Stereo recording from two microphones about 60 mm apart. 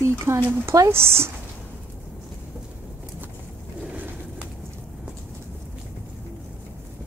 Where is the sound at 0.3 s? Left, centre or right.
Right.